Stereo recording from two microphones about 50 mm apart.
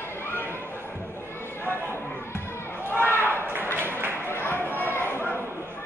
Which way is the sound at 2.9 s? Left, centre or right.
Left.